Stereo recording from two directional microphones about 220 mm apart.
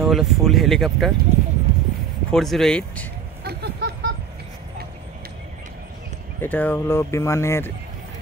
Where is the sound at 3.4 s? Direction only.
45° right (ahead or behind).